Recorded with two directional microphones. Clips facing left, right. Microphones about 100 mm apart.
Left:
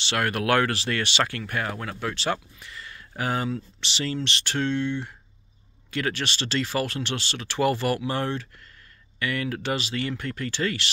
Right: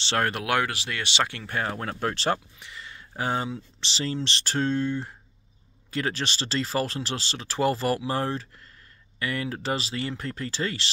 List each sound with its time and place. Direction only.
0.0 s speech: 30° right (ahead or behind)
2.6 s speech: 20° right (ahead or behind)